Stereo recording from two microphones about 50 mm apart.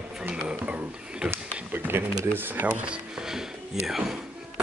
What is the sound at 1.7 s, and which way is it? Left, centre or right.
Speech, right.